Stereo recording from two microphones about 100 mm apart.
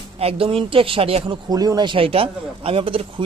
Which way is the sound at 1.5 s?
40° right (ahead or behind).